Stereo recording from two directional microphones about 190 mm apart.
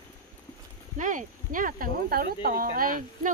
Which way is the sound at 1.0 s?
45° right (ahead or behind).